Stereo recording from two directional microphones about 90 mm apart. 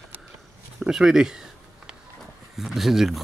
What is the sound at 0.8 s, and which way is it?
Speech, 5° right (ahead or behind).